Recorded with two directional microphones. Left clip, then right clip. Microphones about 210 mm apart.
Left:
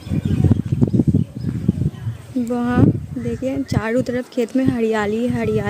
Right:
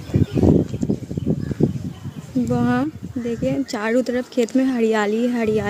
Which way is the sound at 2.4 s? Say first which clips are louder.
Left 3 dB; centre (ahead or behind).